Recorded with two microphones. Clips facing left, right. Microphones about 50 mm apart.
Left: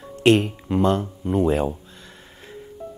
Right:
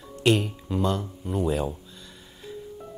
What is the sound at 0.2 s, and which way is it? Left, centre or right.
Speech, left.